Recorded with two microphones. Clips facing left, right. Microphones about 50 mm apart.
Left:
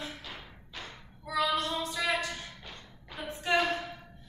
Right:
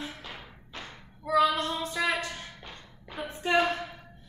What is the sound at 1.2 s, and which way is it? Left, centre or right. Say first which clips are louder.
Child singing: right 5 dB; right.